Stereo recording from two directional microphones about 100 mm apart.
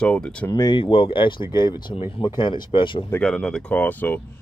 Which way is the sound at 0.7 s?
60° left (ahead or behind).